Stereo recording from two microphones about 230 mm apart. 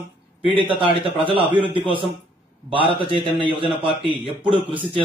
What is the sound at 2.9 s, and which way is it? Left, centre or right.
Speech, left.